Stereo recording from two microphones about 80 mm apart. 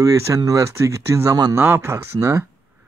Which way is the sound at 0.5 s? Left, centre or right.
Right.